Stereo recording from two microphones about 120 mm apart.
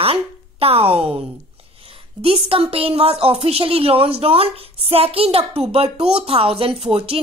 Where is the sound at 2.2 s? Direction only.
55° right (ahead or behind).